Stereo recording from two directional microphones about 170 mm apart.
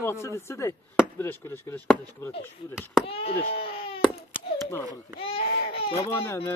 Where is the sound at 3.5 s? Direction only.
35° left (ahead or behind).